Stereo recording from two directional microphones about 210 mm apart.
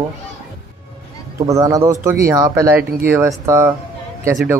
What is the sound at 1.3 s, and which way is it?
Speech, 15° right (ahead or behind).